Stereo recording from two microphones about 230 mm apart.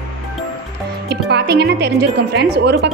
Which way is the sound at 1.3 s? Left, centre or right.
Right.